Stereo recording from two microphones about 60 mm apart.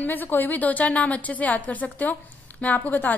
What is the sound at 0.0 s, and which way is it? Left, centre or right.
A woman's voice, left.